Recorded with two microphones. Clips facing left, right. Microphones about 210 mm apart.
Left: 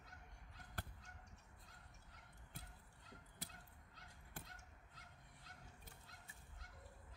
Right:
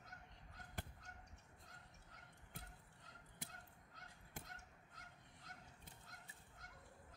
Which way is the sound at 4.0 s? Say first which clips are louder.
Right 1 dB; 45° right (ahead or behind).